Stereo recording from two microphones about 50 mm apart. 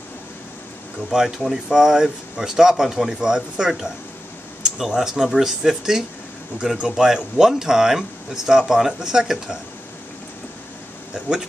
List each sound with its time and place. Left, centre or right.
1.1 s speech: centre